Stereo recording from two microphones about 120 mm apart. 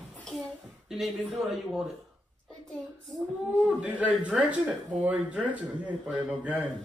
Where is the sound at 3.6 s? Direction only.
10° right (ahead or behind).